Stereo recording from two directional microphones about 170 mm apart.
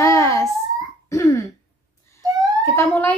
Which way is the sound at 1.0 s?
20° left (ahead or behind).